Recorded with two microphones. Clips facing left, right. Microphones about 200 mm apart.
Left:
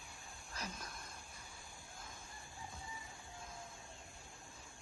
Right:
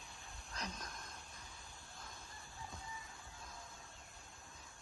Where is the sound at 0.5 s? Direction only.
5° left (ahead or behind).